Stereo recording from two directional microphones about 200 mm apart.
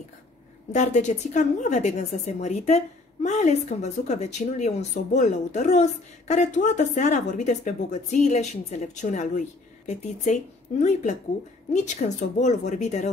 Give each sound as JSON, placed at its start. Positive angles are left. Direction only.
{"t": 0.7, "sound": "a woman's voice", "side_deg": 35}